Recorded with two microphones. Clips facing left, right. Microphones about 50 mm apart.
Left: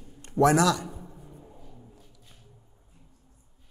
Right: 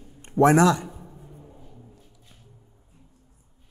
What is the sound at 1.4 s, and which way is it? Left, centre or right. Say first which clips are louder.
Vehicle: right 1 dB; centre.